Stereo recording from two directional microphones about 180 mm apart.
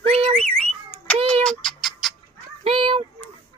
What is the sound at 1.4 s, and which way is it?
Bird, centre (ahead or behind).